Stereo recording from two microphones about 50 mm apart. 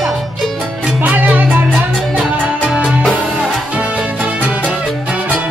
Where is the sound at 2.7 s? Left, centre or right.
Centre.